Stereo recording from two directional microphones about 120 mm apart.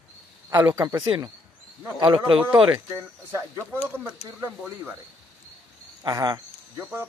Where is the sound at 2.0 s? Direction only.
45° right (ahead or behind).